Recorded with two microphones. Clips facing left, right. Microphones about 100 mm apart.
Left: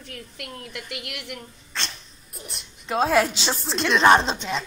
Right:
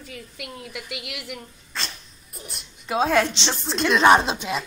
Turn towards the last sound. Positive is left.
turn(degrees=-5)  # may be behind; listen again after turning